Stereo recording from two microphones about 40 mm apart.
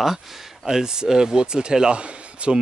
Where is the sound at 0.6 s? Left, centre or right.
Centre.